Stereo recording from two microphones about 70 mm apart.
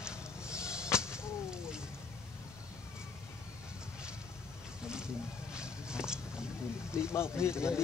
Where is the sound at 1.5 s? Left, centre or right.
Centre.